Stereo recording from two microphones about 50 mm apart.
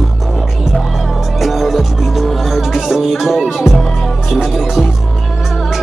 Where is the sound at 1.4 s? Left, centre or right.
Centre.